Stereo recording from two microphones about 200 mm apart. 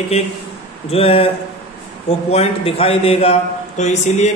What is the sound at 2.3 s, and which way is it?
A man's voice, 30° left (ahead or behind).